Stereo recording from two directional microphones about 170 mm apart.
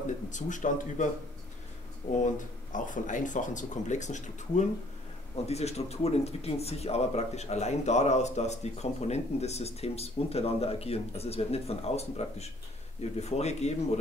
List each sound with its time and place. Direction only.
0.0 s speech: 45° left (ahead or behind)
2.2 s speech: 50° left (ahead or behind)